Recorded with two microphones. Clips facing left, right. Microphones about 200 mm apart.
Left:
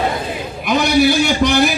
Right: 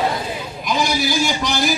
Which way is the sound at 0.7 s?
65° left (ahead or behind).